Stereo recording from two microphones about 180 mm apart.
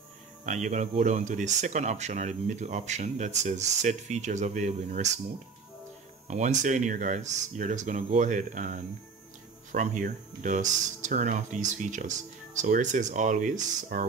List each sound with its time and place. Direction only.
0.5 s speech: 40° right (ahead or behind)
6.2 s speech: 40° right (ahead or behind)